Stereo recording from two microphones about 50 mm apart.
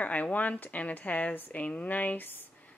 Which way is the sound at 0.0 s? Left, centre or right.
Left.